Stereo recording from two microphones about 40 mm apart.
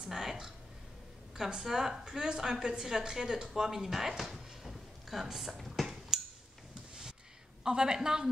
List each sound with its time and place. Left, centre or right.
0.0 s a woman's voice: centre
1.5 s a woman's voice: centre
4.2 s dishes: centre
5.9 s a sound: centre
7.6 s a woman's voice: centre